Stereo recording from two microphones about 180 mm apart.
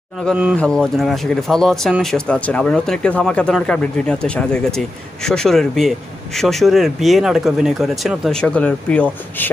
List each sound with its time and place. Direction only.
0.2 s speech: 5° right (ahead or behind)